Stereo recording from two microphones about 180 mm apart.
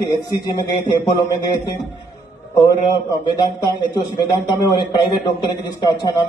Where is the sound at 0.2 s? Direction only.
25° left (ahead or behind).